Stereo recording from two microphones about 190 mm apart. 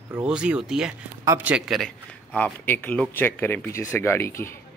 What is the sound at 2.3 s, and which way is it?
Speech, 10° left (ahead or behind).